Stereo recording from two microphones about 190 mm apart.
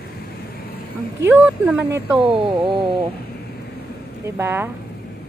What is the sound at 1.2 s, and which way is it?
Speech, 10° right (ahead or behind).